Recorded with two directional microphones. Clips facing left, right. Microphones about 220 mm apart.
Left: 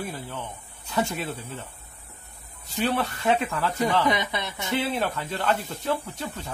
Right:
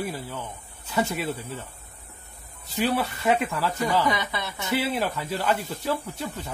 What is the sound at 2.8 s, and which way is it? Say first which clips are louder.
Speech: right 1 dB; 5° right (ahead or behind).